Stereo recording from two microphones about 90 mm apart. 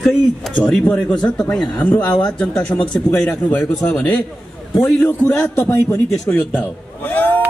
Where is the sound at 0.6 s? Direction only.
10° left (ahead or behind).